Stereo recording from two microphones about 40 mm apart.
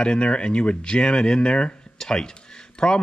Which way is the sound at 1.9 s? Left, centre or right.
Centre.